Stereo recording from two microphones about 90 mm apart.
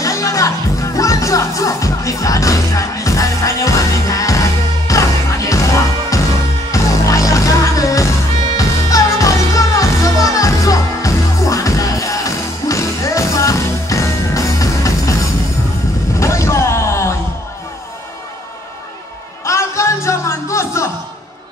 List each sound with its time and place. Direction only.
0.0 s music: 35° left (ahead or behind)
16.2 s vehicle: 35° left (ahead or behind)
19.4 s music: 35° left (ahead or behind)